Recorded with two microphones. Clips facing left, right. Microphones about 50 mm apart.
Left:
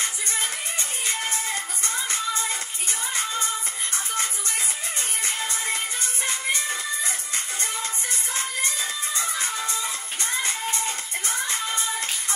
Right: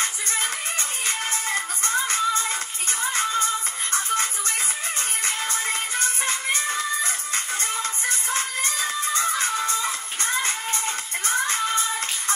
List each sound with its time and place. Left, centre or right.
1.0 s music: right
5.2 s music: right